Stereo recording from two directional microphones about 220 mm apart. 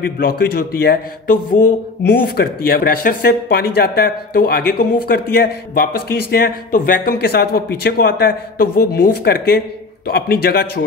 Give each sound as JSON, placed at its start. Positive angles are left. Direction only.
{"t": 0.0, "sound": "a man's voice", "side_deg": 45}